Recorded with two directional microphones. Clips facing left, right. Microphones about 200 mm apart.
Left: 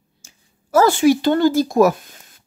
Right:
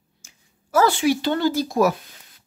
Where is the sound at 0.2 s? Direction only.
40° left (ahead or behind).